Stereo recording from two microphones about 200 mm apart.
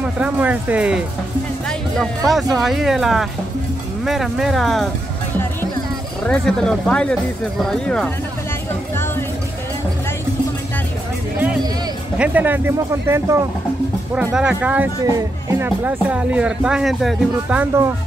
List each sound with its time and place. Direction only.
0.2 s speech: 5° right (ahead or behind)
6.2 s speech: 5° left (ahead or behind)
8.9 s music: 10° left (ahead or behind)
12.2 s speech: 10° right (ahead or behind)